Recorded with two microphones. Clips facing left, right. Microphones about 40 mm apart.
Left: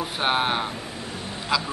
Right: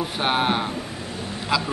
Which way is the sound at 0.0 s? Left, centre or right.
Centre.